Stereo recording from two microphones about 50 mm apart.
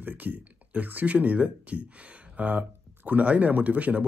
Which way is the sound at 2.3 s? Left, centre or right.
Right.